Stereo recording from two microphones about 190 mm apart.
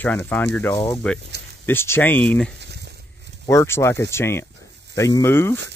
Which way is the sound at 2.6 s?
60° right (ahead or behind).